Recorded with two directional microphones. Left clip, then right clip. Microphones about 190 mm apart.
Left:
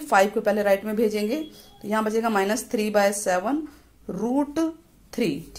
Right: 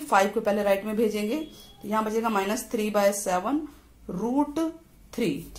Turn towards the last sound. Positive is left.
turn(degrees=25)  # may be behind; listen again after turning